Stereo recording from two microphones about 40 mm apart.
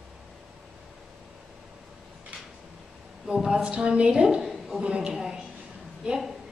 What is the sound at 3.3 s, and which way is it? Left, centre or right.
Speech, centre.